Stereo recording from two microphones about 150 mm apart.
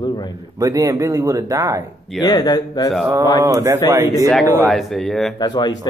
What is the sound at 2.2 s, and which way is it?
Speech, 25° left (ahead or behind).